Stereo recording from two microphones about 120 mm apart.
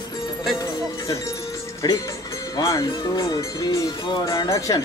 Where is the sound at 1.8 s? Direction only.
35° left (ahead or behind).